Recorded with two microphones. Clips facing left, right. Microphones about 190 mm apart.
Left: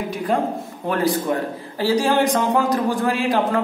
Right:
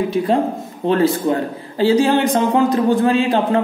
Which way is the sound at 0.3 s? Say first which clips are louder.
Right 3 dB; 25° right (ahead or behind).